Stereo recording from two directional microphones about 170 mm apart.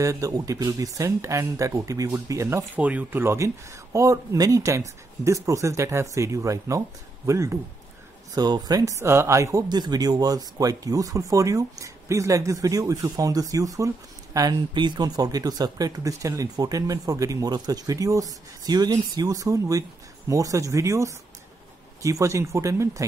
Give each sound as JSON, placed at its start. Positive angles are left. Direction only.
{"t": 0.0, "sound": "speech", "side_deg": -20}